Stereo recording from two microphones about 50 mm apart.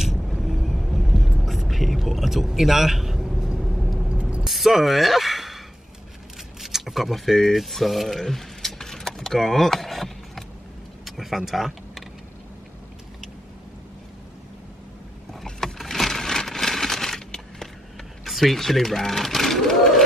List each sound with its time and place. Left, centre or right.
0.0 s vehicle: centre
4.1 s vehicle: right
4.5 s speech: centre
6.6 s a sound: centre
11.1 s vehicle: centre
15.6 s a sound: centre
18.2 s speech: centre